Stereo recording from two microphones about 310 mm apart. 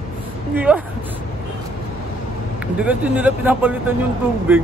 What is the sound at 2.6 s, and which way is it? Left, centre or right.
Speech, centre.